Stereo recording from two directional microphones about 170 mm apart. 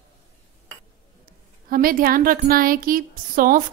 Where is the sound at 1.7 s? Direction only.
55° right (ahead or behind).